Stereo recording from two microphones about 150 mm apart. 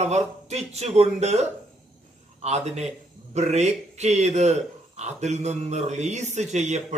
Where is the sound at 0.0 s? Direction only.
50° right (ahead or behind).